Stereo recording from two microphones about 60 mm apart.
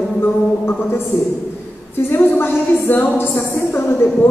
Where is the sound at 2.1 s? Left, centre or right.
Left.